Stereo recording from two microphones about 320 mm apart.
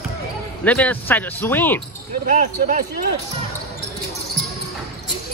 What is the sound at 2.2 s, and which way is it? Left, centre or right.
Speech, right.